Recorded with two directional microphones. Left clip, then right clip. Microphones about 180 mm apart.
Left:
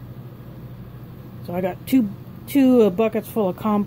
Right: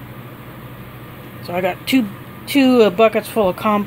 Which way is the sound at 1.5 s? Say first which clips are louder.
Right 4 dB; 15° left (ahead or behind).